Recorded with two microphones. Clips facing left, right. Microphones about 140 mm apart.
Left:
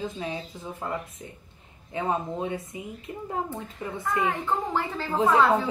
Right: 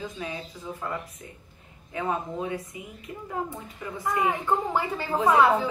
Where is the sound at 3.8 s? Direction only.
30° left (ahead or behind).